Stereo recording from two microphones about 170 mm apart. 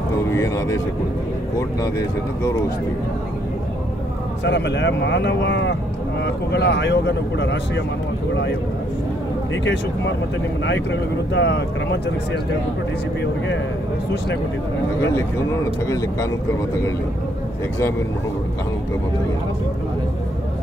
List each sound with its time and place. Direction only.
0.3 s speech: 15° left (ahead or behind)
1.8 s speech: 20° left (ahead or behind)
4.5 s speech: 90° left
10.6 s speech: 90° left
15.9 s speech: 15° left (ahead or behind)